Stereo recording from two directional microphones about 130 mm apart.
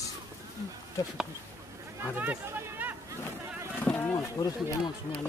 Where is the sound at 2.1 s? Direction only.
15° right (ahead or behind).